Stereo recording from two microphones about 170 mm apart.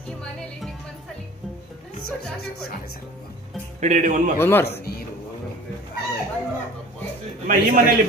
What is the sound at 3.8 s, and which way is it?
Speech, 45° right (ahead or behind).